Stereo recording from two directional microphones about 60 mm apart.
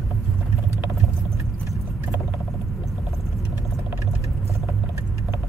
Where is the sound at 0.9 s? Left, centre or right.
Right.